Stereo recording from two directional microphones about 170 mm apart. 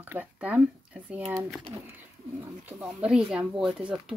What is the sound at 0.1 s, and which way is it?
Speech, 10° right (ahead or behind).